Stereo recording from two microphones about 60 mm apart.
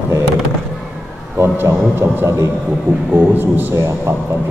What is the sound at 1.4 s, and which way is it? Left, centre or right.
Mantra, right.